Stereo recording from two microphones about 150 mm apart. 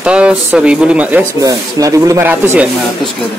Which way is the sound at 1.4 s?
20° right (ahead or behind).